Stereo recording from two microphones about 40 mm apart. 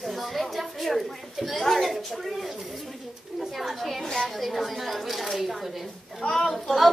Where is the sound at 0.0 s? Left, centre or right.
Centre.